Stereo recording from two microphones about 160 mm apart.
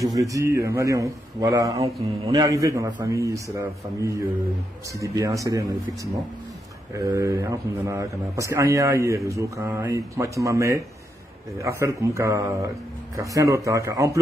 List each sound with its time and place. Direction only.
0.0 s speech: 20° right (ahead or behind)